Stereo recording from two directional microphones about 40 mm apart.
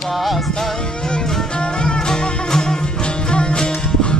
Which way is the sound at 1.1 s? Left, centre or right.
Left.